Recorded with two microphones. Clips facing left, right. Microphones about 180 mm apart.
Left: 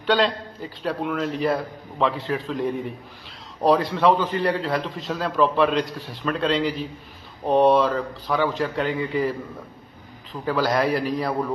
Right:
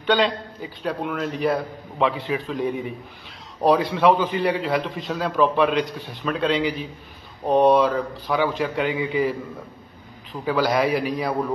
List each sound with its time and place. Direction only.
0.0 s a man's voice: centre (ahead or behind)
10.4 s a man's voice: centre (ahead or behind)